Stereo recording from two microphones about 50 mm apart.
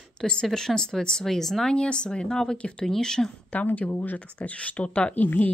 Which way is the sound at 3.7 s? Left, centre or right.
Left.